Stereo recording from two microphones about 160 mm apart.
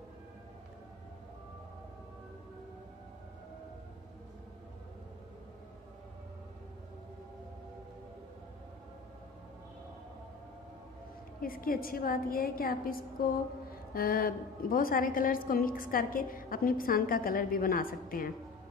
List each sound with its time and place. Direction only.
11.4 s a woman's voice: 65° left (ahead or behind)